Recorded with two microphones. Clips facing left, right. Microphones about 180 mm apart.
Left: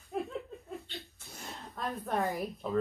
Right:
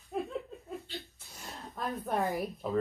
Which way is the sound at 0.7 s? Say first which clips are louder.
Right 2 dB; centre (ahead or behind).